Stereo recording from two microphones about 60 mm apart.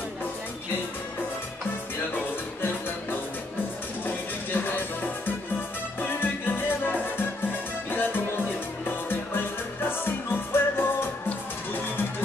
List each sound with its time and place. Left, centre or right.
2.1 s music: left